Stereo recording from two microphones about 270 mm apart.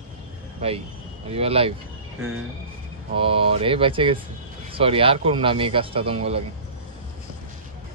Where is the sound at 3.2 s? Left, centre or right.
Centre.